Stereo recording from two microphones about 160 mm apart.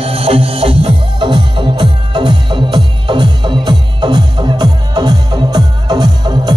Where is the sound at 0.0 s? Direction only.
35° right (ahead or behind).